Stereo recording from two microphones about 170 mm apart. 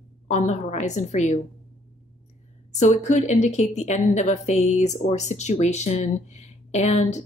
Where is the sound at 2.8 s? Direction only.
45° left (ahead or behind).